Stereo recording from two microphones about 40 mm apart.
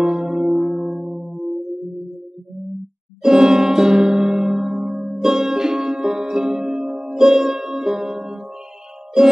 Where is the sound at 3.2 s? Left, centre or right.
Centre.